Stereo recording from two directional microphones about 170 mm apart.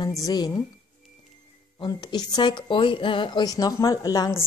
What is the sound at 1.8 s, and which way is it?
Speech, 25° left (ahead or behind).